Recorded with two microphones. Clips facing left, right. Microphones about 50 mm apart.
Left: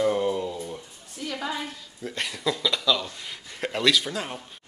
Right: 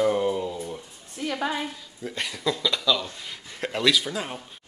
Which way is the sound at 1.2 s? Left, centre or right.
Right.